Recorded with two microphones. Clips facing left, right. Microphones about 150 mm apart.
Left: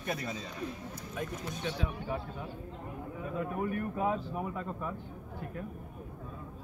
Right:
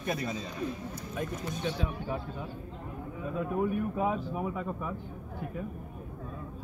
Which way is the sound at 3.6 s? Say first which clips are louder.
Right 1 dB; 10° right (ahead or behind).